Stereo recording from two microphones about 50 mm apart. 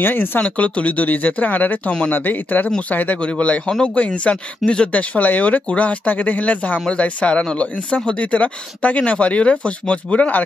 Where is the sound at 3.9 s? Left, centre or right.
Left.